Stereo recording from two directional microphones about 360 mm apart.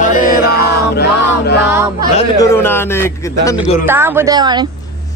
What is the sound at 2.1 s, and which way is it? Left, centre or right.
Speech, centre.